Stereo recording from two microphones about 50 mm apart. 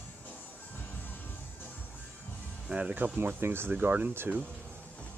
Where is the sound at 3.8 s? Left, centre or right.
Right.